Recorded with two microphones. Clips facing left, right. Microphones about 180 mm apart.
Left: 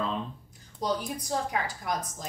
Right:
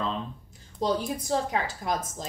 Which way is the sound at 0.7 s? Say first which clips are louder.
Right 3 dB; 25° right (ahead or behind).